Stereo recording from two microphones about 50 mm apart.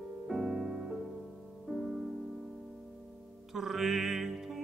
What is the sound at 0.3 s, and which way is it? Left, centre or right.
Music, centre.